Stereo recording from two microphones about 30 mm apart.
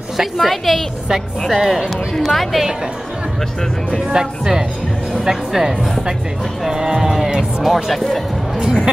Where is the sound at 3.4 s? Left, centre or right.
Centre.